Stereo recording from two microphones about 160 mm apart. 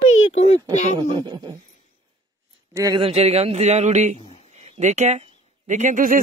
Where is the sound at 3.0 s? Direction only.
40° right (ahead or behind).